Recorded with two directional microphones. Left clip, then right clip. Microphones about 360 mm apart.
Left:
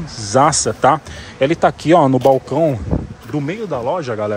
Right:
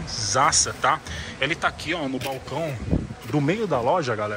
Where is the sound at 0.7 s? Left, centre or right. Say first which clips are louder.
Left 9 dB; centre.